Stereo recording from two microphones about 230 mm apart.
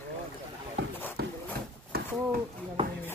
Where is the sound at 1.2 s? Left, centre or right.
Right.